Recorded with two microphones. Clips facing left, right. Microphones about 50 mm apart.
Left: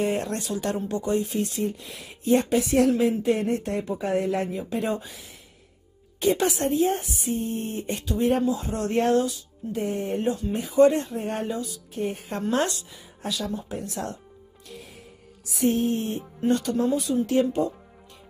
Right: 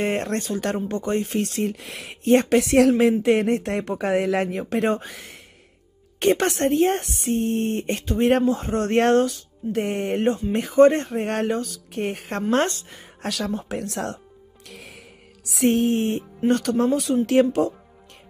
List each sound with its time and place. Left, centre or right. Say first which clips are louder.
0.0 s speech: right 2 dB; right
2.2 s speech: right 4 dB; right
3.0 s speech: right 5 dB; right
8.0 s speech: right 3 dB; right
8.9 s speech: right 4 dB; right
10.5 s speech: right 3 dB; right
12.4 s speech: right 4 dB; right
13.2 s speech: right 3 dB; right
13.7 s music: right 4 dB; right
16.4 s speech: right 3 dB; right